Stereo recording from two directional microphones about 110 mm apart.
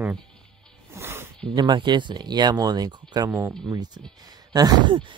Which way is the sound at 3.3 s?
25° right (ahead or behind).